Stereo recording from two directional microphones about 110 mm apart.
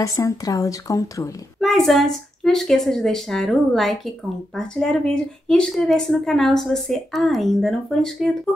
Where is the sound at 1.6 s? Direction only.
Centre (ahead or behind).